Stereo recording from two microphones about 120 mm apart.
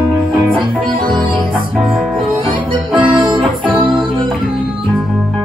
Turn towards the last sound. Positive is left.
turn(degrees=-40)  # may be behind; listen again after turning